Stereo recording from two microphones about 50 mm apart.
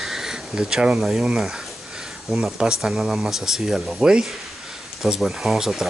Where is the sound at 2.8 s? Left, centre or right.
Centre.